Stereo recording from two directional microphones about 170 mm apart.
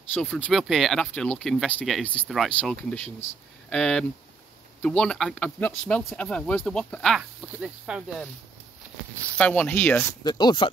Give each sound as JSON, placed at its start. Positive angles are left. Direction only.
{"t": 0.1, "sound": "speech", "side_deg": 10}
{"t": 9.4, "sound": "speech", "side_deg": 10}
{"t": 10.2, "sound": "speech", "side_deg": 25}